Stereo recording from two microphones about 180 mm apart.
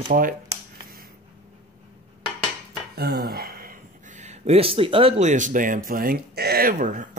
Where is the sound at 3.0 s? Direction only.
60° right (ahead or behind).